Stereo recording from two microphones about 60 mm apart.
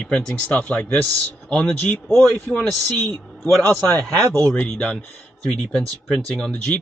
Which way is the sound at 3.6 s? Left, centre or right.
Left.